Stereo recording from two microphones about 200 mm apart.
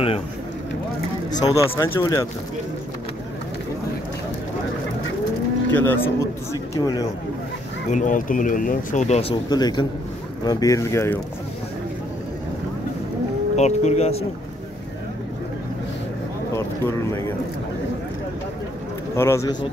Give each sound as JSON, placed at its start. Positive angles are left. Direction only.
{"t": 1.4, "sound": "speech", "side_deg": 15}
{"t": 5.7, "sound": "speech", "side_deg": 10}
{"t": 7.9, "sound": "speech", "side_deg": 40}
{"t": 9.5, "sound": "a man's voice", "side_deg": 20}
{"t": 13.6, "sound": "speech", "side_deg": 35}
{"t": 16.5, "sound": "speech", "side_deg": 10}
{"t": 19.1, "sound": "speech", "side_deg": 15}